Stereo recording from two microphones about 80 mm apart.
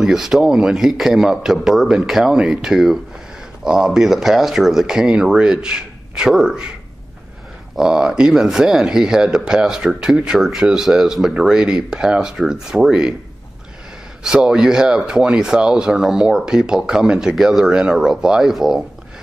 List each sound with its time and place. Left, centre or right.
0.0 s a man's voice: centre
7.7 s speech: centre
14.2 s speech: centre